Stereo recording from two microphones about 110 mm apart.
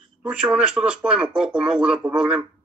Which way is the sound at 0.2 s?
10° right (ahead or behind).